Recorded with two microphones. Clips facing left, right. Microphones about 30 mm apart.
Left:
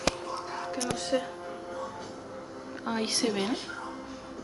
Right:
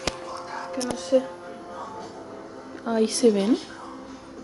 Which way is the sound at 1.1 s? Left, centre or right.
Left.